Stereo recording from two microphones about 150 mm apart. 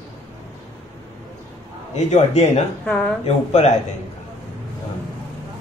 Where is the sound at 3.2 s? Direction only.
45° left (ahead or behind).